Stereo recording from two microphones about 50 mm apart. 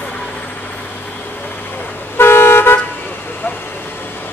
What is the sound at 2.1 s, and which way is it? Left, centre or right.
Toot, left.